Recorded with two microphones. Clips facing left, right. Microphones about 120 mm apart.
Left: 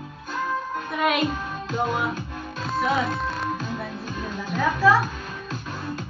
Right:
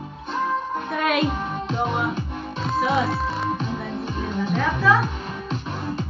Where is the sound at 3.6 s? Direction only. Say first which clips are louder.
Right 3 dB; 25° right (ahead or behind).